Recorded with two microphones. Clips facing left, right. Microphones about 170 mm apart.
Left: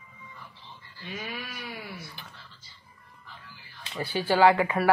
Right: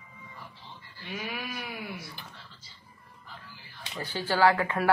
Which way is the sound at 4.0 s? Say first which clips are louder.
Left 3 dB; 15° left (ahead or behind).